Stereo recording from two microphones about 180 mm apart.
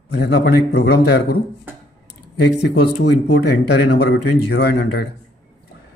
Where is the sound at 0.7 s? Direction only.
65° left (ahead or behind).